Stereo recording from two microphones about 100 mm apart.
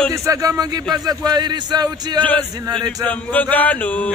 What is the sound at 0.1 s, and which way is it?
Speech, 30° right (ahead or behind).